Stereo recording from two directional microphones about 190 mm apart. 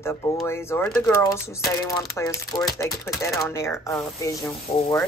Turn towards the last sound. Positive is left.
turn(degrees=15)  # may be behind; listen again after turning